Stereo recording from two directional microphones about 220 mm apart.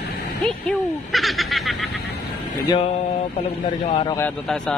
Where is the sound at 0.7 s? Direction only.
Centre (ahead or behind).